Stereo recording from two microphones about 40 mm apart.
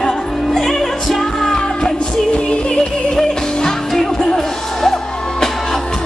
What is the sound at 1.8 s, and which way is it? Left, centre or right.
Music, left.